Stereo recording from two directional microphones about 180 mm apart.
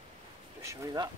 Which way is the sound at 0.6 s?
15° right (ahead or behind).